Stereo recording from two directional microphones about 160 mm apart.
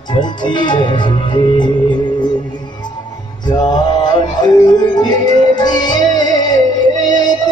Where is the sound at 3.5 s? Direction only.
25° left (ahead or behind).